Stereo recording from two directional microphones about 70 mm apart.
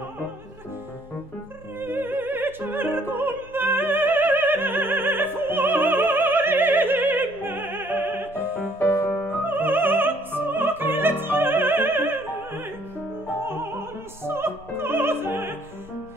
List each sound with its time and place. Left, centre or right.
1.8 s opera: right
8.7 s music: left
9.4 s music: right